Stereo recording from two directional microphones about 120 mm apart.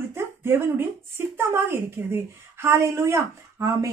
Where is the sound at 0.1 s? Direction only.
20° right (ahead or behind).